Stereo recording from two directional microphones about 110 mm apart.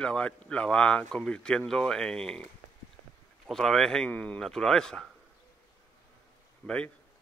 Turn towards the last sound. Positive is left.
turn(degrees=10)  # may be behind; listen again after turning